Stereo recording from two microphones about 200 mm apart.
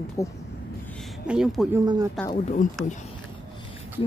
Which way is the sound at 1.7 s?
20° right (ahead or behind).